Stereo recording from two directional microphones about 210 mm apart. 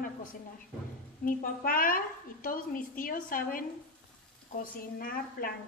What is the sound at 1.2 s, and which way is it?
A woman's voice, 40° left (ahead or behind).